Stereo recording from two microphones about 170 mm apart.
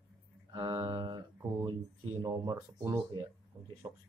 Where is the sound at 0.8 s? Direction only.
20° right (ahead or behind).